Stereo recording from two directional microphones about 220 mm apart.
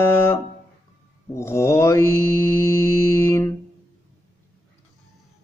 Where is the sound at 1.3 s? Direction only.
15° left (ahead or behind).